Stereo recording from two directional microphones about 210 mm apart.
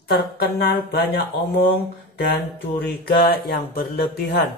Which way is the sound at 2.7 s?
50° left (ahead or behind).